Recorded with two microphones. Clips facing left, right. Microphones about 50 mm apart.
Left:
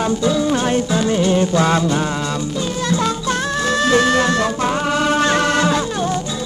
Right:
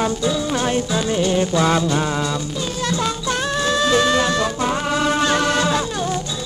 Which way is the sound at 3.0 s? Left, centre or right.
Left.